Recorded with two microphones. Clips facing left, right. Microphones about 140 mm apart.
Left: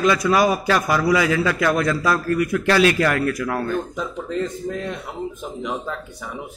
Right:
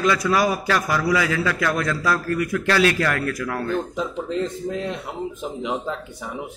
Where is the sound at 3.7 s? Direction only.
25° right (ahead or behind).